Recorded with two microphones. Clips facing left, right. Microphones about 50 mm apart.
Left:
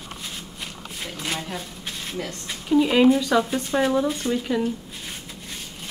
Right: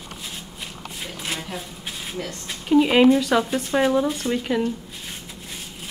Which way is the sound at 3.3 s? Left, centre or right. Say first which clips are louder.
Even; right.